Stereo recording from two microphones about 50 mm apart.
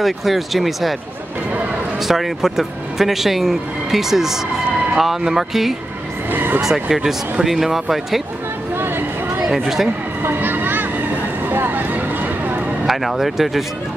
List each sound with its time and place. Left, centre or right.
0.0 s speech: centre
2.0 s speech: centre
6.3 s vehicle: right
6.6 s speech: centre
8.7 s a sound: right
9.5 s speech: centre
10.2 s vehicle: right
11.4 s a sound: right
12.8 s speech: centre